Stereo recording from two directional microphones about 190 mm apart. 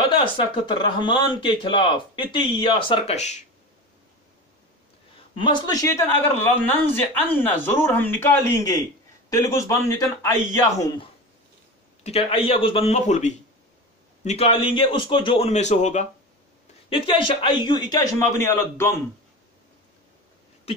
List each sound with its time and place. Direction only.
0.2 s speech: 25° left (ahead or behind)
5.4 s speech: 20° left (ahead or behind)
12.0 s a man's voice: 35° left (ahead or behind)
16.9 s speech: 25° left (ahead or behind)
20.7 s a sound: 30° left (ahead or behind)